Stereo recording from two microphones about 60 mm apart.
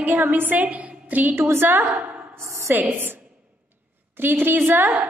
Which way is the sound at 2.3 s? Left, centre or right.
Right.